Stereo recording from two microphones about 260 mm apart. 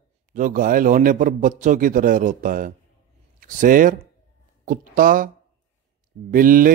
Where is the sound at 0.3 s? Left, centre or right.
Right.